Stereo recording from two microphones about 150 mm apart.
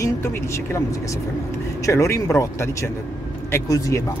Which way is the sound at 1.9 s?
20° left (ahead or behind).